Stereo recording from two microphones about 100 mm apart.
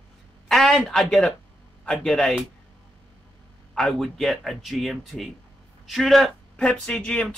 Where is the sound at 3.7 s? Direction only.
5° left (ahead or behind).